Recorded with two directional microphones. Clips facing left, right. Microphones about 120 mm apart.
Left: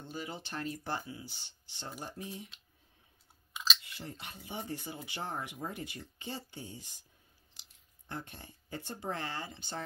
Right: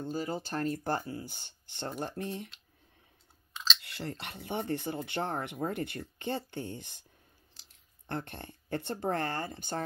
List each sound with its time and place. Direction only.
0.0 s speech: 40° right (ahead or behind); by 2.5 s 60° right (ahead or behind)
3.8 s speech: 75° right (ahead or behind)
8.1 s speech: 60° right (ahead or behind)